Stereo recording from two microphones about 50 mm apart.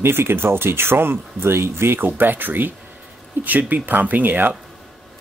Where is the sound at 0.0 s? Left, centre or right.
Right.